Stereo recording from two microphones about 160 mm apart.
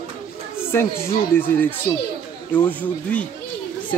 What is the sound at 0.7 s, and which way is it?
Speech, 15° left (ahead or behind).